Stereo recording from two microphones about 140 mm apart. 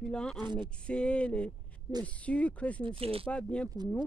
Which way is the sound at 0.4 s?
30° right (ahead or behind).